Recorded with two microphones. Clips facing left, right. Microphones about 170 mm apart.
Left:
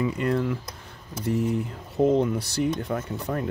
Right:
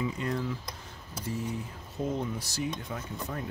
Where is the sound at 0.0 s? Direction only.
60° left (ahead or behind).